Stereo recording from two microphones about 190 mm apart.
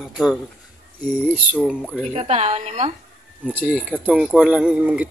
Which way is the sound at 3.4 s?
5° right (ahead or behind).